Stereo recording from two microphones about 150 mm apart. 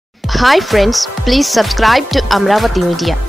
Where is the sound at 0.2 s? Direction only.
Centre (ahead or behind).